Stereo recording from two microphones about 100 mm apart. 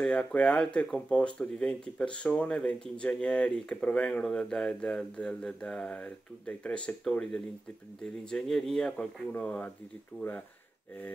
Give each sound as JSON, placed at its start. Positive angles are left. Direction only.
{"t": 0.0, "sound": "speech", "side_deg": 10}